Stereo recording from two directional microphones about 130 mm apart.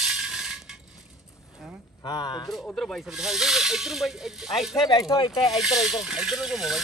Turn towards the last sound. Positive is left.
turn(degrees=-5)  # may be behind; listen again after turning